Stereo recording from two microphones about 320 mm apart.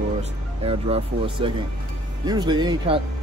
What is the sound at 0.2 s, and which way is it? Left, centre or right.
Speech, centre.